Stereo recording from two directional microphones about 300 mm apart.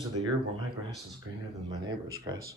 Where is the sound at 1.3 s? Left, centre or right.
Right.